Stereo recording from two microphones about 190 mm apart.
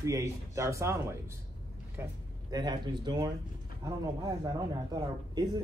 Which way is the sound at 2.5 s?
20° right (ahead or behind).